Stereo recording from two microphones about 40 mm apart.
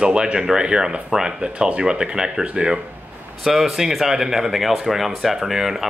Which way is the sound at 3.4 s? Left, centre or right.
Centre.